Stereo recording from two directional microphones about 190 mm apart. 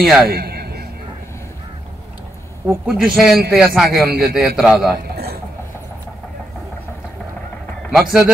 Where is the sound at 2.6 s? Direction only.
15° right (ahead or behind).